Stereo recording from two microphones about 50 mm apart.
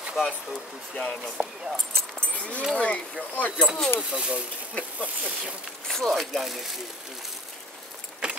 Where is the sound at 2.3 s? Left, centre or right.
Left.